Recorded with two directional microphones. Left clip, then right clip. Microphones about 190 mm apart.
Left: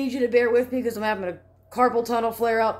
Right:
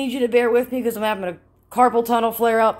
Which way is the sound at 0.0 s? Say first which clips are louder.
Right 3 dB; 20° right (ahead or behind).